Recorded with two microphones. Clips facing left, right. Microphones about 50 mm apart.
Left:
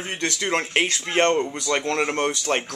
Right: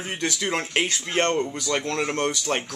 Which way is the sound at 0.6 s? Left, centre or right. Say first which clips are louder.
Left 2 dB; centre.